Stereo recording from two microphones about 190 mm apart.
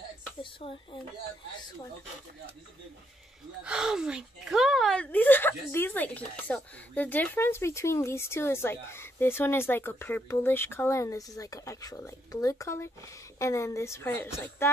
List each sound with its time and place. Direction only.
0.4 s speech: 25° left (ahead or behind)
3.6 s a woman's voice: 5° right (ahead or behind); by 14.7 s 15° left (ahead or behind)